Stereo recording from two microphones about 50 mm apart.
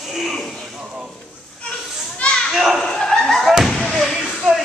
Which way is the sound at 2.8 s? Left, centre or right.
Centre.